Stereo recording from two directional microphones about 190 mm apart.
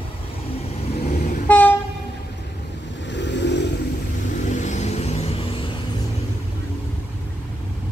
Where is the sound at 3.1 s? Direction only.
65° left (ahead or behind).